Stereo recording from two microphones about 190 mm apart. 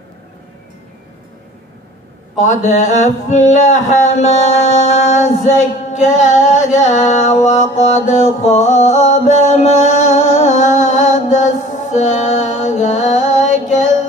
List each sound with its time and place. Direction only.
2.3 s speech: 40° left (ahead or behind)
8.4 s music: 35° left (ahead or behind)